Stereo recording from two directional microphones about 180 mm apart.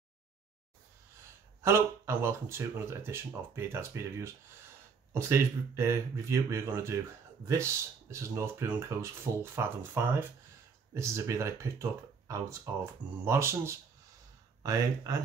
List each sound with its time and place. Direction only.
1.6 s speech: 15° right (ahead or behind)